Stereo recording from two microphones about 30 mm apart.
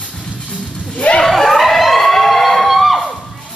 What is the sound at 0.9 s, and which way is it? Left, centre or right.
Snicker, left.